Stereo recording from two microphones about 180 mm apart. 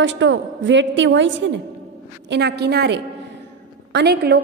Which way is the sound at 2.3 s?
70° right (ahead or behind).